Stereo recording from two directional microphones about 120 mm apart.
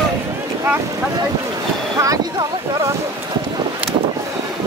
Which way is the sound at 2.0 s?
30° right (ahead or behind).